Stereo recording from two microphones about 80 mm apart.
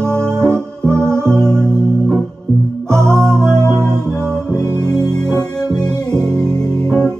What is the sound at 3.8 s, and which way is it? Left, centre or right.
Music, right.